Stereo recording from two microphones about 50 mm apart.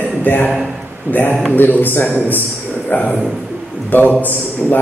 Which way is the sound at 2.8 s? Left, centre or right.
Left.